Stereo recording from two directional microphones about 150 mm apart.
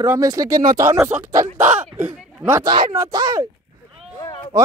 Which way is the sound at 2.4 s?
20° right (ahead or behind).